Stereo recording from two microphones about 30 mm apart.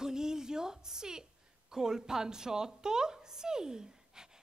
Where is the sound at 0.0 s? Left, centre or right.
Right.